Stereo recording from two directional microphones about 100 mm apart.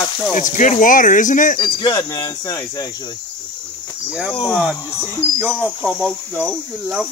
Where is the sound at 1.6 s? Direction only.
40° left (ahead or behind).